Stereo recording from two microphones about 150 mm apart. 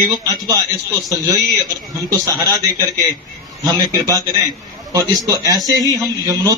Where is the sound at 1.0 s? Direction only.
25° right (ahead or behind).